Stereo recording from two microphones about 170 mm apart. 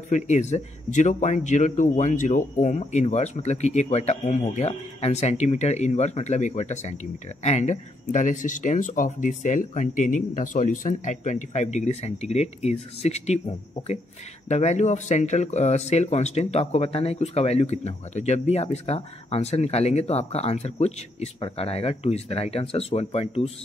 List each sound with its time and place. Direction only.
0.1 s speech: 45° left (ahead or behind)